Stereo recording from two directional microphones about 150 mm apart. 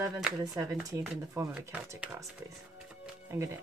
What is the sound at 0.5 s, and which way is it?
Speech, 20° right (ahead or behind).